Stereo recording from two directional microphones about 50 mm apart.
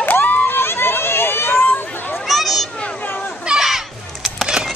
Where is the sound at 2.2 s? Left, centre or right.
Centre.